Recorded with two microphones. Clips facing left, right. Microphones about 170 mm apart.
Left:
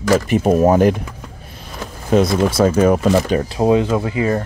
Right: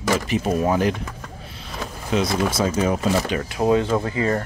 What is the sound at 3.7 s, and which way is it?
Speech, 15° left (ahead or behind).